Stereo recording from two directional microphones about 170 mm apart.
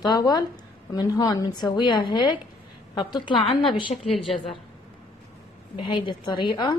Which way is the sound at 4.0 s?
Centre (ahead or behind).